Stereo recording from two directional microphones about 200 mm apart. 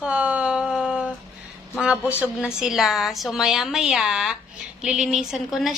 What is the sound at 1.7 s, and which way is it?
A woman's voice, 5° right (ahead or behind).